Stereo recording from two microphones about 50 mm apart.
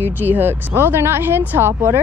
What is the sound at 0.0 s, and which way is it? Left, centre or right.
A woman's voice, right.